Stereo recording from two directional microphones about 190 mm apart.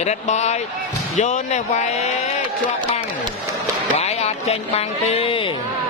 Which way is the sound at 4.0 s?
35° left (ahead or behind).